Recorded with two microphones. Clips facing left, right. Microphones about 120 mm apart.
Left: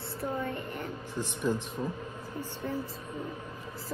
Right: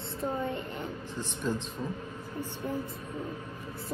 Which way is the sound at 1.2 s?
15° left (ahead or behind).